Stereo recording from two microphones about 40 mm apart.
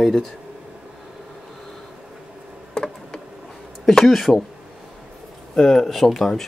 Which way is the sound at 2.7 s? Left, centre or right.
Left.